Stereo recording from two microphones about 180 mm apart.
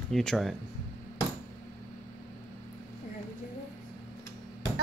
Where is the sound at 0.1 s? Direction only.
Centre (ahead or behind).